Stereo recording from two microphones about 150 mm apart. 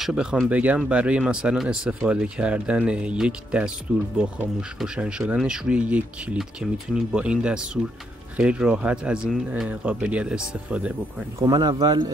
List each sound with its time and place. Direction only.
0.0 s speech: 5° right (ahead or behind)
11.3 s speech: 25° right (ahead or behind)